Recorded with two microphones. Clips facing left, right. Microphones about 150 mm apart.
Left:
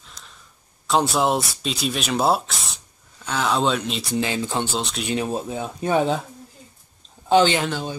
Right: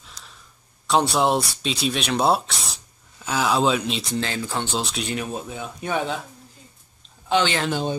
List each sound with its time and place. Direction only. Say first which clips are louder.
0.0 s a sound: even; centre (ahead or behind)
0.8 s speech: even; centre (ahead or behind)
4.2 s speech: left 3 dB; 15° left (ahead or behind)
4.7 s speech: even; centre (ahead or behind)
5.1 s speech: left 4 dB; 30° left (ahead or behind)
7.2 s speech: left 5 dB; 35° left (ahead or behind)
7.7 s speech: right 4 dB; 25° right (ahead or behind)